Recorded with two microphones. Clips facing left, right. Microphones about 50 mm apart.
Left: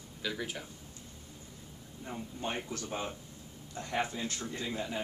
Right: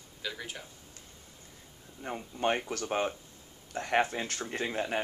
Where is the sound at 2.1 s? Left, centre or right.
Right.